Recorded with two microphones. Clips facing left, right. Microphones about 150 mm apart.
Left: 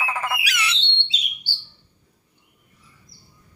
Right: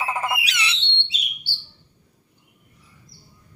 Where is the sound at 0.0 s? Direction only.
20° right (ahead or behind).